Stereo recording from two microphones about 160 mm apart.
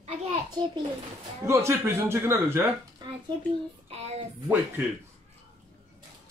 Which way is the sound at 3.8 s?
40° right (ahead or behind).